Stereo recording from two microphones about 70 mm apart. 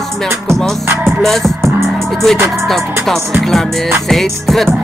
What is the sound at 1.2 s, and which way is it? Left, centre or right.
Music, centre.